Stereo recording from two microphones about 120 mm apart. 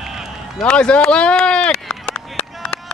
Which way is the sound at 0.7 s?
10° left (ahead or behind).